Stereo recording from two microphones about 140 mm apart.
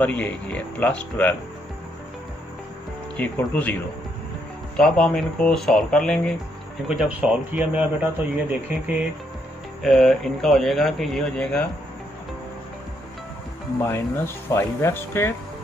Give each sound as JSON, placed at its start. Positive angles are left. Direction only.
{"t": 0.0, "sound": "speech", "side_deg": 10}
{"t": 3.2, "sound": "speech", "side_deg": 10}
{"t": 4.7, "sound": "speech", "side_deg": 5}
{"t": 6.9, "sound": "a man's voice", "side_deg": -10}
{"t": 9.8, "sound": "speech", "side_deg": 0}
{"t": 13.8, "sound": "speech", "side_deg": 15}